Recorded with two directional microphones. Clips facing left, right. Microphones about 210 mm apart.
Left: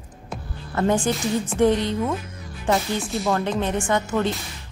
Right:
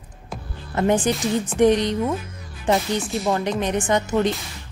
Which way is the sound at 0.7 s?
20° right (ahead or behind).